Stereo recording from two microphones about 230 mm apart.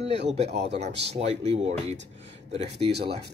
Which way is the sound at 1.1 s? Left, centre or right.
Right.